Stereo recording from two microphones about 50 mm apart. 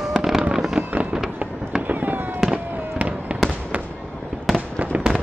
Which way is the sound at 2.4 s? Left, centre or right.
Centre.